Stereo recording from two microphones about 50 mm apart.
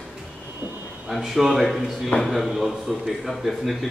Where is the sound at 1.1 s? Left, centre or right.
Centre.